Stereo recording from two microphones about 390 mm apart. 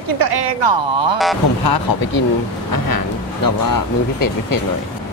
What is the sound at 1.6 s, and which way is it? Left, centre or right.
Speech, left.